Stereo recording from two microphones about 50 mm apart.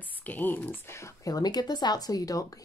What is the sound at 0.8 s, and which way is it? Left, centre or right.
Speech, left.